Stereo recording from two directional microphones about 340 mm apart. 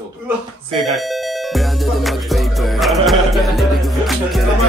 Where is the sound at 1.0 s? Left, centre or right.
Centre.